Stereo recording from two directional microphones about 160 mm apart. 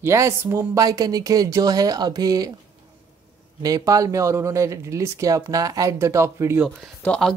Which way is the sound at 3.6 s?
20° right (ahead or behind).